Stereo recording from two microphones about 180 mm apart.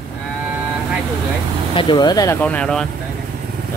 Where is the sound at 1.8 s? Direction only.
25° left (ahead or behind).